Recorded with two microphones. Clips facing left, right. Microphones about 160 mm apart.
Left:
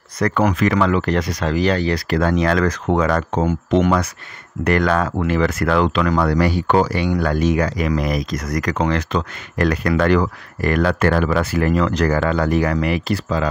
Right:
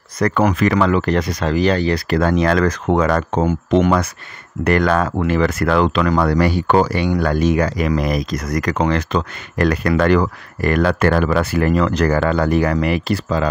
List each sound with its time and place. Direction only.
0.2 s speech: 35° right (ahead or behind)
2.1 s speech: 40° right (ahead or behind)
3.4 s speech: 30° right (ahead or behind)
4.6 s speech: 40° right (ahead or behind)
6.4 s speech: 50° right (ahead or behind)
7.7 s speech: 50° right (ahead or behind)
8.3 s speech: 25° right (ahead or behind); by 12.1 s 50° right (ahead or behind)
12.1 s speech: 40° right (ahead or behind)
12.5 s speech: 50° right (ahead or behind)
13.0 s speech: 30° right (ahead or behind)